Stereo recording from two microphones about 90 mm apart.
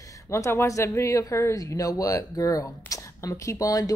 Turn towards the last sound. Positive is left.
turn(degrees=40)  # may be behind; listen again after turning